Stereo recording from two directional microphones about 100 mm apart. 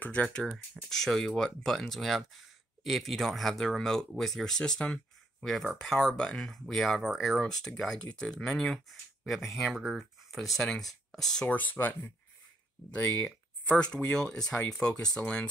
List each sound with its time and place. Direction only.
0.0 s speech: 15° left (ahead or behind)
11.4 s speech: 15° left (ahead or behind)
13.1 s a sound: 20° left (ahead or behind)
14.1 s speech: 5° left (ahead or behind)